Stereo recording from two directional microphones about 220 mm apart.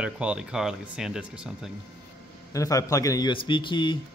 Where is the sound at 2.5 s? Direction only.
15° left (ahead or behind).